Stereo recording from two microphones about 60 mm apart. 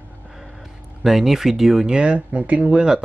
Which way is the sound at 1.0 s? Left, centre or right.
Centre.